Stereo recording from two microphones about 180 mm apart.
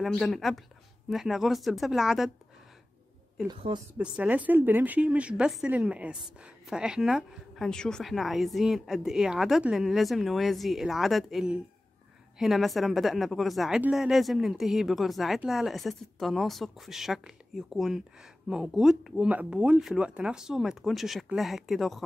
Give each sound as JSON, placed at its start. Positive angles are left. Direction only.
{"t": 0.0, "sound": "a woman's voice", "side_deg": 0}
{"t": 3.4, "sound": "a woman's voice", "side_deg": -25}
{"t": 4.0, "sound": "a woman's voice", "side_deg": -10}